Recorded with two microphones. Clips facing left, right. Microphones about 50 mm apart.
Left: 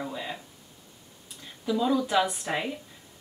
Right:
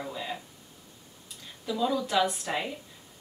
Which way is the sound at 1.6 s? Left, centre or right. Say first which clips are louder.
Left 3 dB; centre.